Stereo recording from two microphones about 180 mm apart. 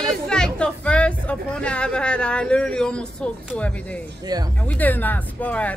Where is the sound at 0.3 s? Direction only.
5° left (ahead or behind).